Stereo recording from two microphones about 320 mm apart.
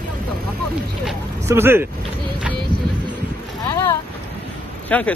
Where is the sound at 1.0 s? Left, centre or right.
Centre.